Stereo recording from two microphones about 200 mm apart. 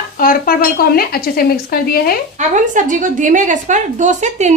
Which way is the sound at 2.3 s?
40° right (ahead or behind).